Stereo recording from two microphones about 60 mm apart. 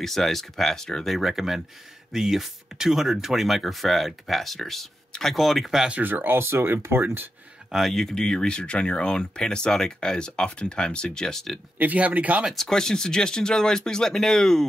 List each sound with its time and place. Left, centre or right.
0.0 s speech: centre
5.9 s speech: right
7.7 s speech: centre
11.8 s speech: right
12.5 s speech: centre